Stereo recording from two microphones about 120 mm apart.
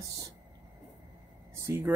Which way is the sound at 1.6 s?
20° right (ahead or behind).